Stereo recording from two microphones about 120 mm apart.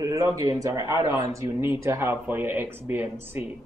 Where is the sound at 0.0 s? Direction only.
30° right (ahead or behind).